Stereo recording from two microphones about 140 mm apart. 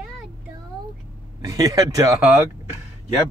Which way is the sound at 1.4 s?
25° right (ahead or behind).